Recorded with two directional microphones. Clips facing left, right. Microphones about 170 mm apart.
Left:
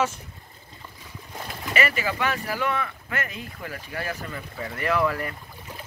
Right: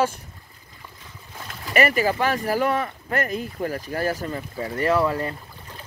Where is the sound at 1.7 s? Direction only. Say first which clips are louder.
Right 6 dB; 40° right (ahead or behind).